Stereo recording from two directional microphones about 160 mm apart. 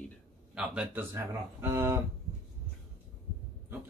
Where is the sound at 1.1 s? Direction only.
15° right (ahead or behind).